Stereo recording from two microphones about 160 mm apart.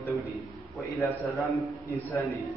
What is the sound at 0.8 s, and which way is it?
Speech, 15° left (ahead or behind).